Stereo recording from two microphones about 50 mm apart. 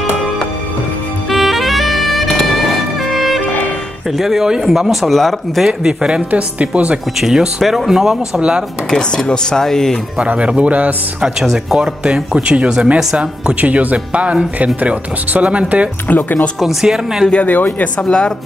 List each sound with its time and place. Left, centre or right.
1.3 s music: centre
3.3 s music: left
4.2 s speech: centre
5.7 s speech: centre
7.2 s speech: centre
8.4 s speech: centre
9.1 s speech: centre
10.2 s speech: right
11.5 s speech: centre
13.6 s speech: right
16.1 s speech: left
16.6 s speech: centre
17.3 s speech: left
17.9 s speech: centre